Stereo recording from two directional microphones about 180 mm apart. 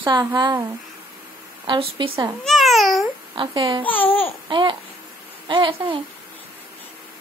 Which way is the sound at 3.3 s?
30° right (ahead or behind).